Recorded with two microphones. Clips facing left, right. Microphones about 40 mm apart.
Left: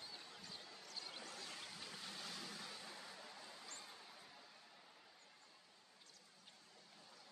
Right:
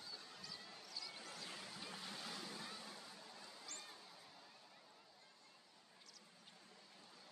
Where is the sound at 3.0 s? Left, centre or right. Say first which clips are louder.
Left 2 dB; left.